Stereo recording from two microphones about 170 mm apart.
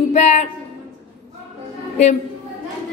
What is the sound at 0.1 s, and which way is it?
Speech, 45° left (ahead or behind).